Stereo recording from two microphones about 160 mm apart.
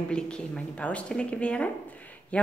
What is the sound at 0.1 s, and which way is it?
Speech, 5° left (ahead or behind).